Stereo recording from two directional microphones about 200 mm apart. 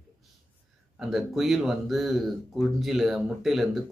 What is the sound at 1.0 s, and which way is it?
Speech, centre (ahead or behind).